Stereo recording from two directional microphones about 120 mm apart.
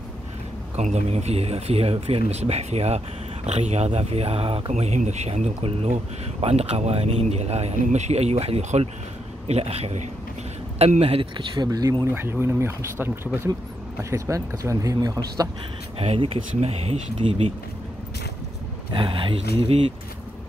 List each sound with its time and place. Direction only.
0.7 s speech: 65° right (ahead or behind)
11.3 s speech: 40° right (ahead or behind)
16.0 s speech: 55° right (ahead or behind)
18.9 s speech: 45° right (ahead or behind)